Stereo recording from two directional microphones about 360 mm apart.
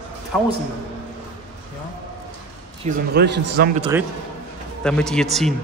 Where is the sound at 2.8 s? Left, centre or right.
Right.